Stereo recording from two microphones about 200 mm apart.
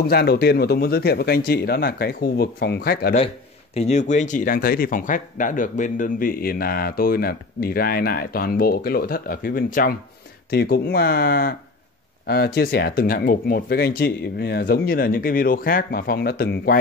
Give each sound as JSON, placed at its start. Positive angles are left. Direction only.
{"t": 0.0, "sound": "speech", "side_deg": 50}
{"t": 3.7, "sound": "speech", "side_deg": 35}